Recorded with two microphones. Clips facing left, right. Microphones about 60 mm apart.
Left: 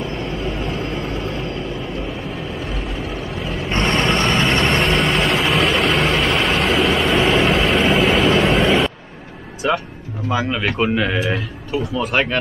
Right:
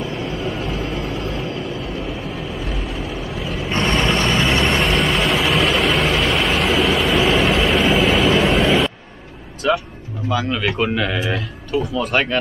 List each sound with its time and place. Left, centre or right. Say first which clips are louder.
0.0 s vehicle: even; centre
2.6 s vehicle: even; centre
9.6 s music: right 1 dB; left
10.8 s speech: left 4 dB; centre
11.3 s speech: right 1 dB; centre